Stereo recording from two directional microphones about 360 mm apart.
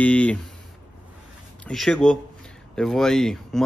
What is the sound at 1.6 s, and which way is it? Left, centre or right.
Speech, centre.